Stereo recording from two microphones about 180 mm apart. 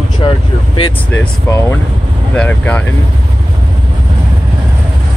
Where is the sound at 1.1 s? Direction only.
10° left (ahead or behind).